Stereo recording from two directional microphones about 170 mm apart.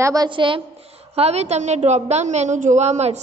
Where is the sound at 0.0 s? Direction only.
20° right (ahead or behind).